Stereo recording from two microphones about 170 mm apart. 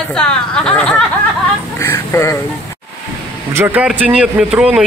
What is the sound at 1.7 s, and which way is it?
Speech, 15° left (ahead or behind).